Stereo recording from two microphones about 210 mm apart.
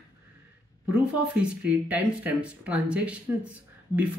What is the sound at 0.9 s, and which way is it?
Speech, 5° right (ahead or behind).